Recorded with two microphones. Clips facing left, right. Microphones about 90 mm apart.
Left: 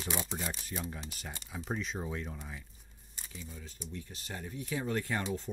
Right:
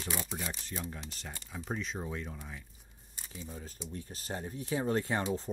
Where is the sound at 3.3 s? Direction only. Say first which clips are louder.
Right 3 dB; 40° right (ahead or behind).